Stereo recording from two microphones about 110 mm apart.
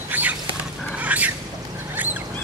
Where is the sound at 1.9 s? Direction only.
15° right (ahead or behind).